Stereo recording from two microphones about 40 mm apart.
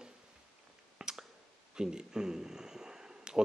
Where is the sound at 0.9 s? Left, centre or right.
Centre.